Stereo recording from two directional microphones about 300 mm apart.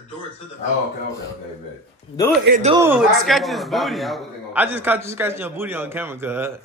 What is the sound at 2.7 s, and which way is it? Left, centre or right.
A man's voice, centre.